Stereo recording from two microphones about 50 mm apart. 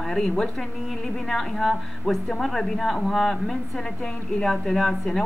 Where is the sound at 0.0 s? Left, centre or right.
Centre.